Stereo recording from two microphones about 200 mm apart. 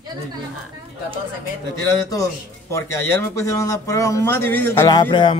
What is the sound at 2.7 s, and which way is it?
Speech, 15° left (ahead or behind).